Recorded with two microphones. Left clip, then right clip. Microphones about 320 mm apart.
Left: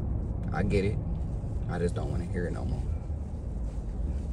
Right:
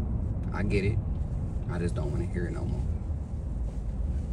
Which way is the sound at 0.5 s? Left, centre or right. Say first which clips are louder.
Left 1 dB; centre.